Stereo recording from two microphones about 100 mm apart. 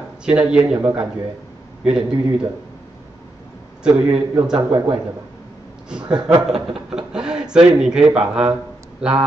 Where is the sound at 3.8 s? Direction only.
10° right (ahead or behind).